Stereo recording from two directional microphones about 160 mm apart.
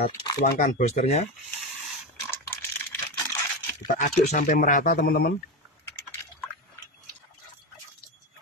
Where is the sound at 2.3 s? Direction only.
15° left (ahead or behind).